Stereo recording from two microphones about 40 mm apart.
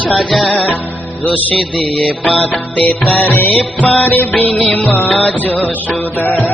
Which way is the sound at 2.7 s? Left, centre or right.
Left.